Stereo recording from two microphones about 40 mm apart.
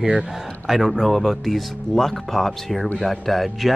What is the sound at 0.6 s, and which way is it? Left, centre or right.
Speech, centre.